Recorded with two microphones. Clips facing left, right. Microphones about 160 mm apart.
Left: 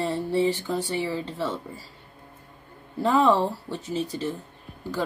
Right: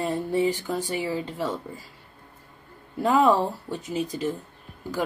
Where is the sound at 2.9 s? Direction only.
15° right (ahead or behind).